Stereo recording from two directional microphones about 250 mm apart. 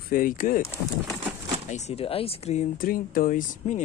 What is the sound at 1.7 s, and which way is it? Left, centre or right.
Speech, left.